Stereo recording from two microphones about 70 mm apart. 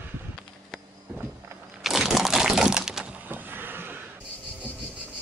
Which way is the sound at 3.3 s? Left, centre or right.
Right.